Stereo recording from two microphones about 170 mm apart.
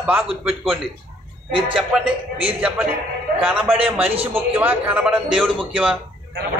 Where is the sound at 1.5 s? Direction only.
30° right (ahead or behind).